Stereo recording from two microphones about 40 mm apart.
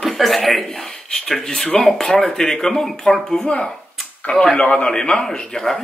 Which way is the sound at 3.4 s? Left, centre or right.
Left.